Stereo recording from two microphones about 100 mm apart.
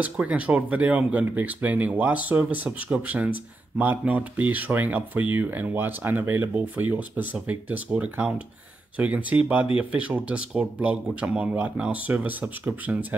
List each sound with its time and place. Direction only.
0.0 s speech: 15° right (ahead or behind)